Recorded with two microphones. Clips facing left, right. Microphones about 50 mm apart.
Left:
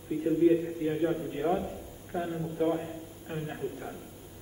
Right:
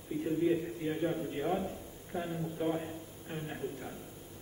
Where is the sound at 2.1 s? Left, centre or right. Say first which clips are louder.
Left 4 dB; centre.